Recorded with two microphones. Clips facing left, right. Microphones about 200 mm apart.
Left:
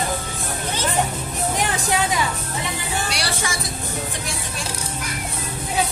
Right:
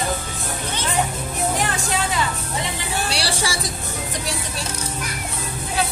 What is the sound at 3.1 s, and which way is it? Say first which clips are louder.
Music: right 2 dB; 30° right (ahead or behind).